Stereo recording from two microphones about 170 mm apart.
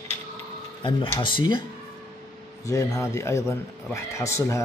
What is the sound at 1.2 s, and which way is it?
Speech, 30° left (ahead or behind).